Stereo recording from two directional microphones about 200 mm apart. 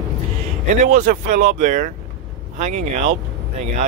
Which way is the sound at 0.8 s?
40° right (ahead or behind).